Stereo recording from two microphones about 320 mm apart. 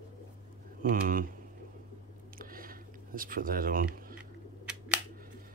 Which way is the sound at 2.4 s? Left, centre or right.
Right.